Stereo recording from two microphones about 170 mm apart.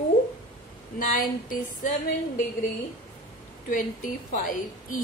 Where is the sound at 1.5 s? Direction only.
50° left (ahead or behind).